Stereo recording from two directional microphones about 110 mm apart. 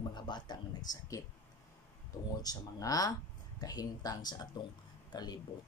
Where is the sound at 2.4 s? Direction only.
35° left (ahead or behind).